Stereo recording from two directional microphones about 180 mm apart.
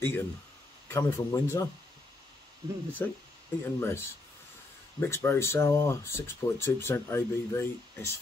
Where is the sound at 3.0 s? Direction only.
15° left (ahead or behind).